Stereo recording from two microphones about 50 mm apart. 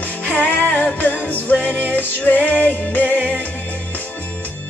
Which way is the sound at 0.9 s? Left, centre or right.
Left.